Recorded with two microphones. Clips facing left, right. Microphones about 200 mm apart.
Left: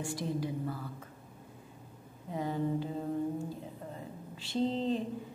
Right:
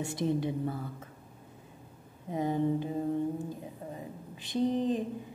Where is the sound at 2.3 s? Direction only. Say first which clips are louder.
Right 4 dB; 20° right (ahead or behind).